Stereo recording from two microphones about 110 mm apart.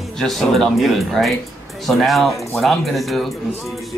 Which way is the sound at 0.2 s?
5° left (ahead or behind).